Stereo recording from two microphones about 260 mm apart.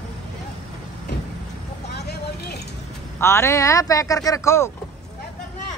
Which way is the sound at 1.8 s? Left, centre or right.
Left.